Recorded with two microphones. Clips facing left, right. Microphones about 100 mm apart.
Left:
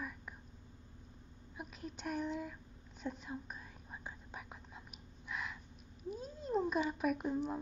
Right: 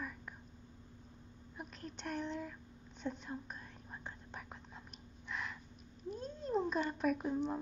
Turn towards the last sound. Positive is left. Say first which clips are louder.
# right 1 dB
turn(degrees=5)  # may be behind; listen again after turning